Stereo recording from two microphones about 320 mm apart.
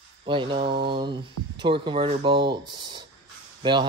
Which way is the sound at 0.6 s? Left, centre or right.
Right.